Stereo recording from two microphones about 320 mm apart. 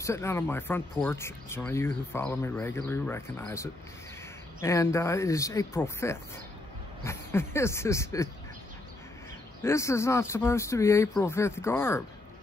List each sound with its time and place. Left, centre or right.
0.0 s speech: centre
9.6 s speech: centre